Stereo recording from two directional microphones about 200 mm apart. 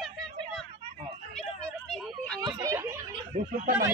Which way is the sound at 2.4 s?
20° right (ahead or behind).